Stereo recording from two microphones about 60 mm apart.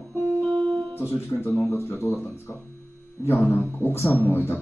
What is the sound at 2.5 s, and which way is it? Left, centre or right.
Speech, left.